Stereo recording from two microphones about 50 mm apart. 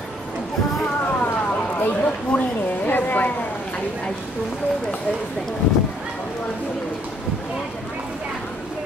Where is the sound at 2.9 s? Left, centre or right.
Left.